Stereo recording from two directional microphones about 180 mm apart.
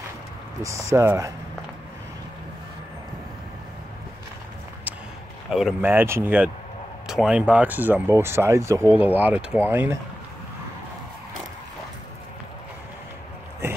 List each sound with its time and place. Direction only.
0.6 s speech: 15° right (ahead or behind)
5.5 s speech: centre (ahead or behind)